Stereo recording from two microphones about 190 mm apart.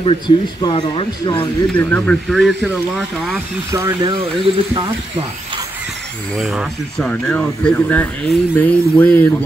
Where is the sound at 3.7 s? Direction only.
20° right (ahead or behind).